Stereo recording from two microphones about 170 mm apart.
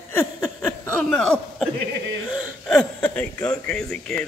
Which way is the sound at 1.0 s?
5° left (ahead or behind).